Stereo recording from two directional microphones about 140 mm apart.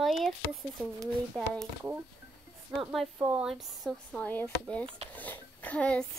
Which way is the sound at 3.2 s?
15° right (ahead or behind).